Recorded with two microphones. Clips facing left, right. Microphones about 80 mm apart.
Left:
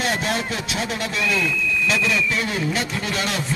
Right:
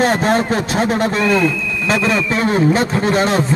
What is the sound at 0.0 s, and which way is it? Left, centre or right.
A man's voice, right.